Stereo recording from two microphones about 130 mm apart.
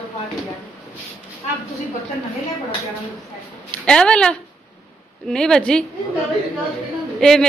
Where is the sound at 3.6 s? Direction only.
5° left (ahead or behind).